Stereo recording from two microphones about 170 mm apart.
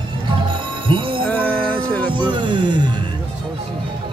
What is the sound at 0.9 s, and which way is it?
Music, 30° right (ahead or behind).